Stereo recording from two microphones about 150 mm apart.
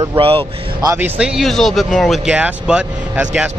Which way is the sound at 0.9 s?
10° right (ahead or behind).